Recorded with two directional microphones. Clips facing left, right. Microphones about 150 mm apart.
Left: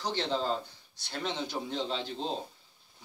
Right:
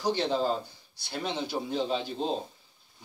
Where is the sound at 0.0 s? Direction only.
10° right (ahead or behind).